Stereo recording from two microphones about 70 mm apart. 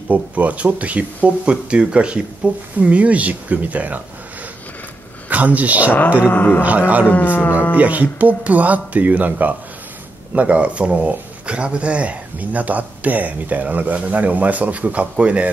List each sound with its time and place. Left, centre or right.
0.1 s speech: right
5.3 s speech: right
6.2 s speech: left
6.6 s speech: right
7.1 s speech: left
7.7 s speech: right